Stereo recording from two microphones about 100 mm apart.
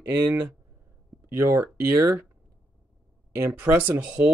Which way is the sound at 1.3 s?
25° right (ahead or behind).